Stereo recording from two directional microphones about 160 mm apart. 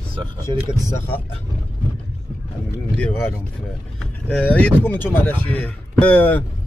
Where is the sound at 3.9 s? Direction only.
5° left (ahead or behind).